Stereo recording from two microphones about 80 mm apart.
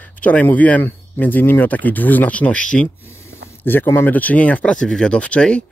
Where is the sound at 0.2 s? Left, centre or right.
Centre.